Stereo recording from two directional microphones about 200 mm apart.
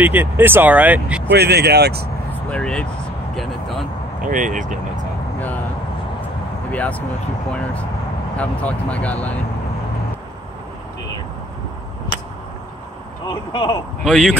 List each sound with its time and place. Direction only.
0.0 s speech: 10° right (ahead or behind)
1.3 s speech: 55° right (ahead or behind)
2.5 s speech: 5° left (ahead or behind)
3.3 s a sound: centre (ahead or behind)
4.2 s speech: 40° right (ahead or behind)
6.7 s speech: 5° left (ahead or behind)
8.4 s speech: 5° left (ahead or behind)
13.3 s speech: 25° left (ahead or behind)
14.0 s speech: centre (ahead or behind)